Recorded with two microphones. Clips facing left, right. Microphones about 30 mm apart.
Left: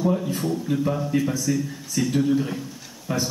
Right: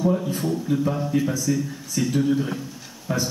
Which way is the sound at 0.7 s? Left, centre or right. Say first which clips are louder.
Right 2 dB; left.